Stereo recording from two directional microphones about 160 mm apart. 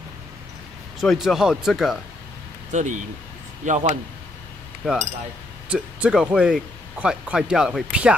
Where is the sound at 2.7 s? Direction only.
50° right (ahead or behind).